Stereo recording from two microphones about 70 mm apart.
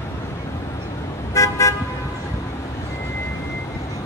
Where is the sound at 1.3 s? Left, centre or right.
Left.